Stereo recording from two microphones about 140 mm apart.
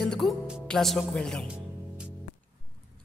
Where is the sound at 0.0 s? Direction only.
5° left (ahead or behind).